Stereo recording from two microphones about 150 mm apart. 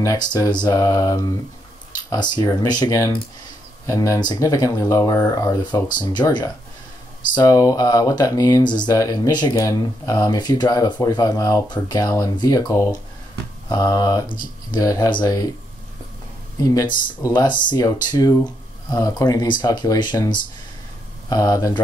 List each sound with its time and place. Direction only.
0.0 s speech: 25° left (ahead or behind)
16.5 s speech: 25° left (ahead or behind)